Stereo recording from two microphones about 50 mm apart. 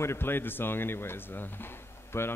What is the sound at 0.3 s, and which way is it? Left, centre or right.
Speech, left.